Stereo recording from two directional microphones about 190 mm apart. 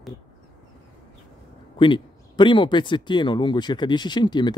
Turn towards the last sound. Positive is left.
turn(degrees=25)  # may be behind; listen again after turning